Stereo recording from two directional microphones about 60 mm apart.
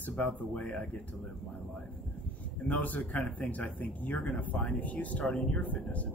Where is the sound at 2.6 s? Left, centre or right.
Left.